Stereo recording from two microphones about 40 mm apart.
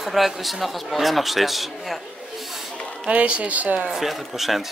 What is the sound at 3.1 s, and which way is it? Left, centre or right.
Speech, right.